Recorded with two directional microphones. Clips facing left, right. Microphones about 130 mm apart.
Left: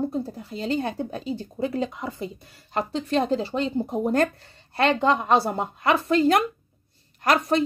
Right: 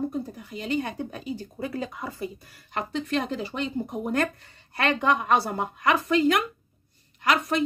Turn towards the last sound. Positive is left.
turn(degrees=40)  # may be behind; listen again after turning